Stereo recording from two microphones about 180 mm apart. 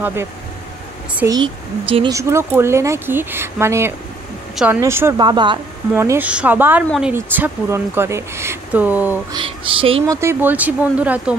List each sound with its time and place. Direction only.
0.0 s speech: 15° right (ahead or behind)
2.1 s speech: 15° right (ahead or behind)
5.2 s speech: 25° right (ahead or behind)
5.9 s speech: 10° right (ahead or behind)
9.3 s speech: 30° right (ahead or behind)
10.0 s speech: 15° right (ahead or behind)